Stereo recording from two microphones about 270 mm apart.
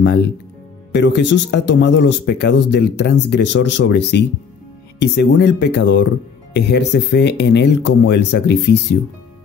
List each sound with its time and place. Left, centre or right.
0.9 s speech: left